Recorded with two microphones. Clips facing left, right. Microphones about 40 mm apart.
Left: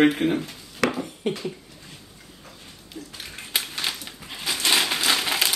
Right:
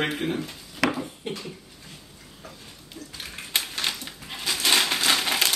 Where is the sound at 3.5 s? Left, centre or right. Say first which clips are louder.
Even; centre.